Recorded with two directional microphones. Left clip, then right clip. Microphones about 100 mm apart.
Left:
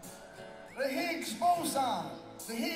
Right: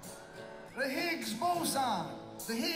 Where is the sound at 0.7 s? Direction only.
15° left (ahead or behind).